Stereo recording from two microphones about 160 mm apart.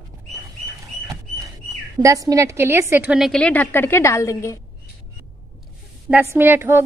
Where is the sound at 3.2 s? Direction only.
5° left (ahead or behind).